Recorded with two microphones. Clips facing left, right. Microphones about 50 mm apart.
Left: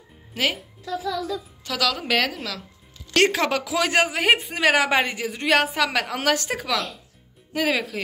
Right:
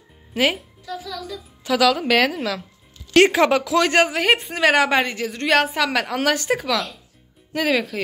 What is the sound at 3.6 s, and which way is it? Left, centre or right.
A man's voice, centre.